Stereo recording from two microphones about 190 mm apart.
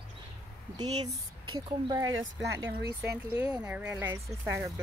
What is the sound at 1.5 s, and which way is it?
Speech, 20° right (ahead or behind).